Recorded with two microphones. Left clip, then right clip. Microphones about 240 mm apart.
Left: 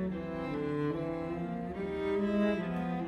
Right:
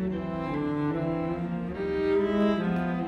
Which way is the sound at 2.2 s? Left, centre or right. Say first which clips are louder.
Right 6 dB; left.